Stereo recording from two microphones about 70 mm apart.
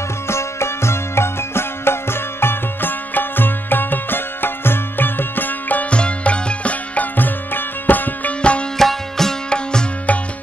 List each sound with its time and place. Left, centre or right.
0.3 s music: left; by 8.6 s centre
8.7 s music: centre